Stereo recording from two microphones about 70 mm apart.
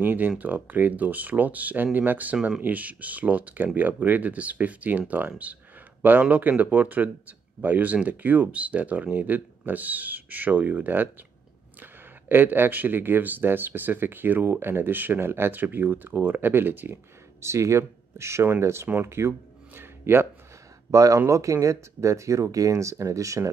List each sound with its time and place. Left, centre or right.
0.0 s speech: right
18.9 s a sound: right
20.9 s speech: right